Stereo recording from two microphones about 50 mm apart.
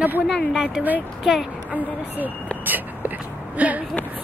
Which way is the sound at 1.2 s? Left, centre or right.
Centre.